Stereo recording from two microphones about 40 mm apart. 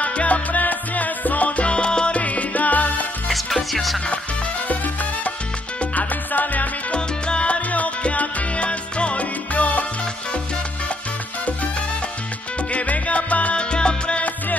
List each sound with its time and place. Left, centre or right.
0.0 s music: left
2.1 s music: left
3.3 s music: centre
5.8 s salsa music: left
6.9 s salsa music: left
9.5 s salsa music: left
12.7 s salsa music: left